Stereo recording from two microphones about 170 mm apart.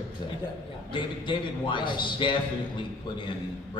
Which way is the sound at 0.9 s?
30° left (ahead or behind).